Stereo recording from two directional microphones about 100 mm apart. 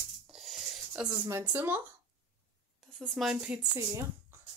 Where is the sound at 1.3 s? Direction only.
20° right (ahead or behind).